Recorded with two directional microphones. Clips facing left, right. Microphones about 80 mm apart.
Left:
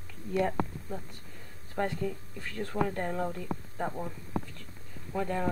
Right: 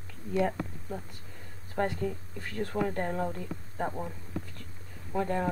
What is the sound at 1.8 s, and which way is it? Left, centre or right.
Speech, centre.